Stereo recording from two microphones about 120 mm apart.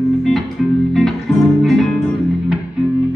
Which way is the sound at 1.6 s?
Centre (ahead or behind).